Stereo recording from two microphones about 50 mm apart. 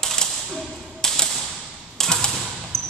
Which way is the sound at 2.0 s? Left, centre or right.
Centre.